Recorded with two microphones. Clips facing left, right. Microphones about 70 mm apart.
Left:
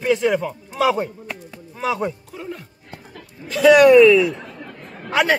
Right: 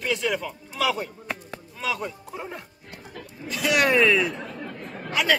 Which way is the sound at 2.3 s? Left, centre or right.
Right.